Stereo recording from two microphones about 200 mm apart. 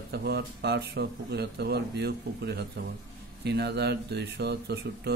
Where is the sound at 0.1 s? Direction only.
55° right (ahead or behind).